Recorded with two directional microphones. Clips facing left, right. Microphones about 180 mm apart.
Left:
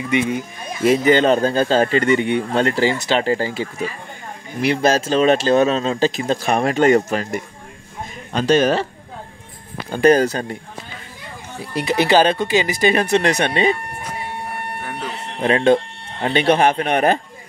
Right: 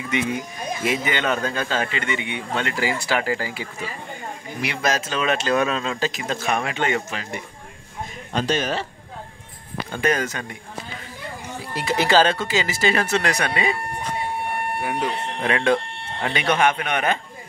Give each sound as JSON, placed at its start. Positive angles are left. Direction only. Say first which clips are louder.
{"t": 0.8, "sound": "a man's voice", "louder": "left 10 dB", "side_deg": 35}
{"t": 8.5, "sound": "speech", "louder": "left 10 dB", "side_deg": 50}
{"t": 9.8, "sound": "a man's voice", "louder": "left 9 dB", "side_deg": 35}
{"t": 11.7, "sound": "speech", "louder": "left 3 dB", "side_deg": 15}
{"t": 14.8, "sound": "speech", "louder": "right 4 dB", "side_deg": -10}
{"t": 15.4, "sound": "a man's voice", "louder": "left 6 dB", "side_deg": 25}